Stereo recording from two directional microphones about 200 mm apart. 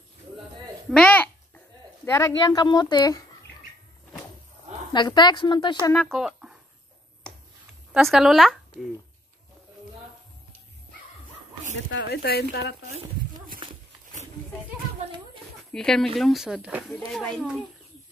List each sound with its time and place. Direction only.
0.8 s a sound: 5° left (ahead or behind)
2.0 s speech: 15° left (ahead or behind)
4.9 s speech: 20° left (ahead or behind)
5.9 s speech: centre (ahead or behind)
7.9 s speech: centre (ahead or behind)
11.9 s speech: 65° left (ahead or behind)
15.7 s speech: 5° left (ahead or behind)